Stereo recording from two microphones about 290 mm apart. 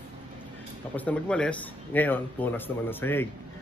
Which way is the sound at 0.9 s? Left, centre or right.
Centre.